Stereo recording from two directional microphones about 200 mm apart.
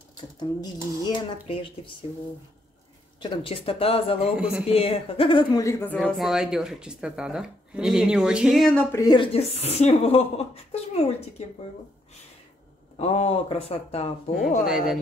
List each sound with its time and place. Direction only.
0.4 s speech: 20° left (ahead or behind)
3.2 s speech: 25° left (ahead or behind)
4.2 s speech: 5° right (ahead or behind)
4.6 s speech: 30° left (ahead or behind); by 5.9 s 15° left (ahead or behind)
5.9 s speech: centre (ahead or behind)
8.9 s speech: 20° left (ahead or behind)
13.0 s speech: 30° left (ahead or behind)
14.6 s speech: centre (ahead or behind)